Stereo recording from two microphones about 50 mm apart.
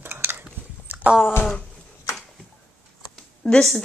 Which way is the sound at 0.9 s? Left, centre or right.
Right.